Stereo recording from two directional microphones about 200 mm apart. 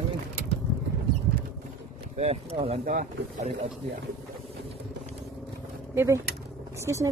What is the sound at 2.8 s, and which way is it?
Speech, 45° right (ahead or behind).